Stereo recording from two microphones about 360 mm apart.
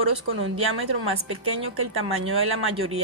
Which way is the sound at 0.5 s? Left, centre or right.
Right.